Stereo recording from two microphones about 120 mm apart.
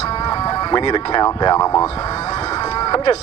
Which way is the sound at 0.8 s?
45° left (ahead or behind).